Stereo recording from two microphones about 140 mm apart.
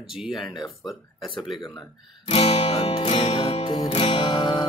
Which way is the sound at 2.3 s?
45° left (ahead or behind).